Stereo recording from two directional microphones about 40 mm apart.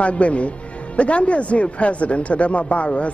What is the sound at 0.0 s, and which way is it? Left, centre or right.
Speech, left.